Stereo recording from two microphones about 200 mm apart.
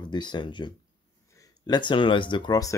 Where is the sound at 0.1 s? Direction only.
20° left (ahead or behind).